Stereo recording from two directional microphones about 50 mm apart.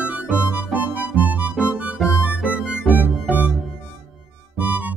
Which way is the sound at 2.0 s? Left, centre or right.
Centre.